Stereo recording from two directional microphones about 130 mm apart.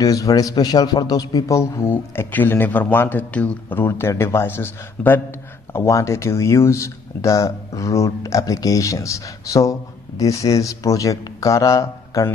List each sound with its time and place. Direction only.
0.0 s speech: 25° left (ahead or behind)